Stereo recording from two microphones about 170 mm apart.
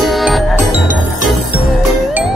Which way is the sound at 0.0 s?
Centre (ahead or behind).